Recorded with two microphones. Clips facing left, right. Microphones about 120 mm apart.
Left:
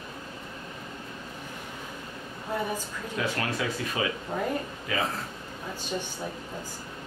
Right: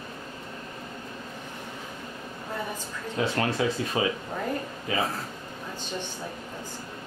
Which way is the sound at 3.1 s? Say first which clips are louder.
Right 4 dB; 30° right (ahead or behind).